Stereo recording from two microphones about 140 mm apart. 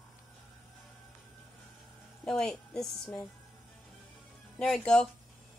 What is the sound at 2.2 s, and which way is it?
A woman's voice, 5° left (ahead or behind).